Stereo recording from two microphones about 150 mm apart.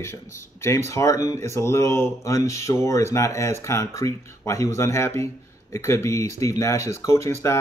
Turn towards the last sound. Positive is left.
turn(degrees=20)  # may be behind; listen again after turning